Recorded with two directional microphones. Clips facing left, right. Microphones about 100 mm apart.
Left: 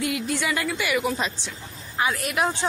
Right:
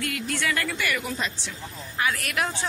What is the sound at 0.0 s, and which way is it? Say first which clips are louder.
A woman's voice: left 3 dB; 15° left (ahead or behind).